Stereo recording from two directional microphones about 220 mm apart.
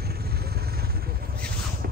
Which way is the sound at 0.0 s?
45° right (ahead or behind).